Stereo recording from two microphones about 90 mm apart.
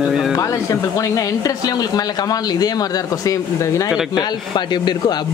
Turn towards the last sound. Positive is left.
turn(degrees=55)  # may be behind; listen again after turning